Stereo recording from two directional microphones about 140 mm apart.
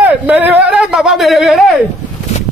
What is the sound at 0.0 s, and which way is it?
Speech, 10° right (ahead or behind).